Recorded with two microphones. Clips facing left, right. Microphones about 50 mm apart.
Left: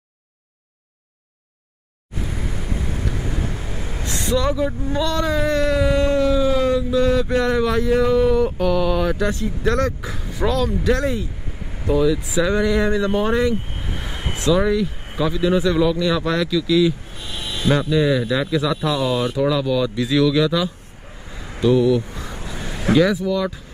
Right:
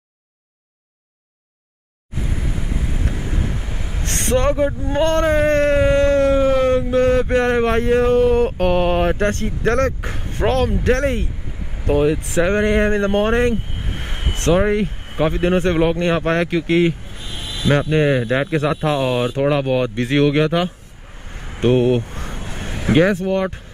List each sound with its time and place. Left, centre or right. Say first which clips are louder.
2.3 s vehicle: right 1 dB; centre
3.0 s wind: even; right
3.3 s vehicle: right 1 dB; right
3.6 s a sound: left 1 dB; centre
4.0 s a sound: right 3 dB; right
11.9 s speech: right 1 dB; right
13.8 s vehicle: even; right
14.4 s speech: right 2 dB; right
22.5 s vehicle: left 1 dB; right
23.1 s speech: right 2 dB; right